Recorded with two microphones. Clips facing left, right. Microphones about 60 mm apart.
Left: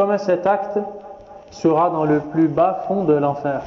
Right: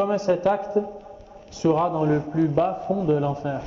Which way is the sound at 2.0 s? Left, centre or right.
Left.